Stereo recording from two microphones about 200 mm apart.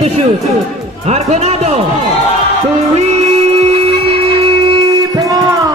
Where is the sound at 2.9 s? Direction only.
35° right (ahead or behind).